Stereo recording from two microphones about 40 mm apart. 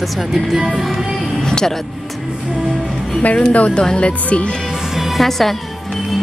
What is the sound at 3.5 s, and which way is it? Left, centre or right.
Speech, left.